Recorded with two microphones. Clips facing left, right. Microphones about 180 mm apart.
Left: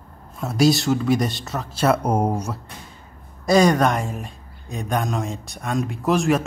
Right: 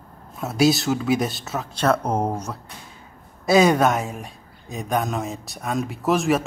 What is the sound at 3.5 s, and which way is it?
A man's voice, 5° right (ahead or behind).